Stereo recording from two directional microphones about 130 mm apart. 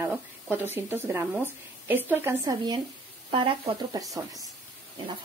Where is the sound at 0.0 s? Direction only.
15° right (ahead or behind).